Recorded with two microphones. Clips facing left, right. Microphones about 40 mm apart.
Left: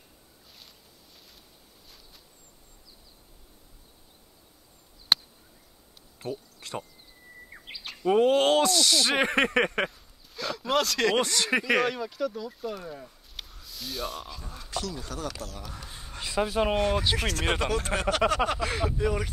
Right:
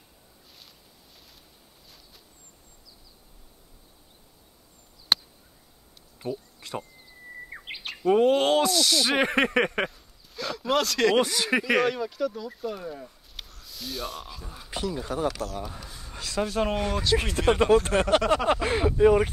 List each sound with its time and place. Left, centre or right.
5.1 s a sound: centre
6.6 s speech: centre
7.5 s bird: right
7.8 s speech: centre
14.7 s speech: right
15.2 s speech: centre
16.2 s speech: centre
17.2 s speech: left
17.9 s speech: centre
18.5 s speech: right